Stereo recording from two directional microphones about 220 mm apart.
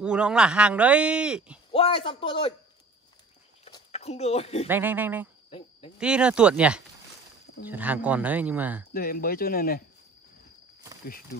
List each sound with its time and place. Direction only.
0.0 s speech: 5° right (ahead or behind)
1.7 s a man's voice: 25° left (ahead or behind)
3.6 s a sound: 30° left (ahead or behind)
4.6 s speech: 10° right (ahead or behind)
8.9 s speech: 40° left (ahead or behind)